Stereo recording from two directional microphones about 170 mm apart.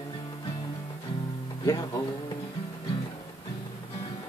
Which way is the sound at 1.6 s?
20° left (ahead or behind).